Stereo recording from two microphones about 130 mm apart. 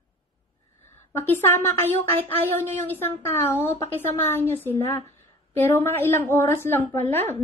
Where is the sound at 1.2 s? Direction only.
15° left (ahead or behind).